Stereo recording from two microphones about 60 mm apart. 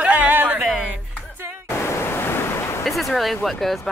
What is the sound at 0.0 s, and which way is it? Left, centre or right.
Music, right.